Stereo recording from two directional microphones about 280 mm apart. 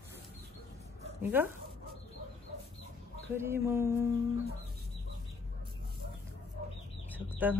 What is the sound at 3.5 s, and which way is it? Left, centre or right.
Speech, centre.